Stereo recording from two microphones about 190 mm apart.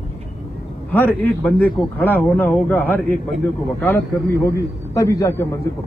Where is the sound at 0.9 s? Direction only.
10° left (ahead or behind).